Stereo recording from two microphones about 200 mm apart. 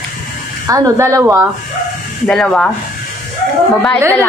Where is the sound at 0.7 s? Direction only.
15° right (ahead or behind).